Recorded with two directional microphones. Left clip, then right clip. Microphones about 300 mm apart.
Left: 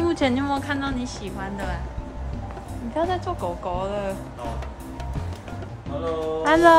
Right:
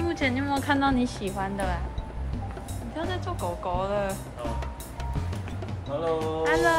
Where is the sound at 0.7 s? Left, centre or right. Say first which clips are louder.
Right 3 dB; centre.